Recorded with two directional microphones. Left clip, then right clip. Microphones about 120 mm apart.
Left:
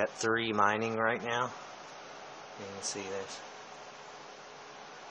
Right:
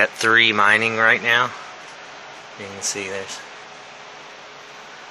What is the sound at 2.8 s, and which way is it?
Speech, 25° right (ahead or behind).